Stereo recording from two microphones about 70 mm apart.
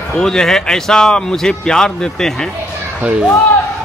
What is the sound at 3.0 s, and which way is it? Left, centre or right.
Speech, centre.